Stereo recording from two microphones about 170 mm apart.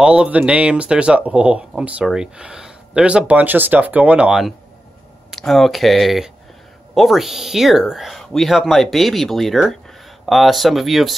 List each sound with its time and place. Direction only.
0.0 s speech: 5° right (ahead or behind)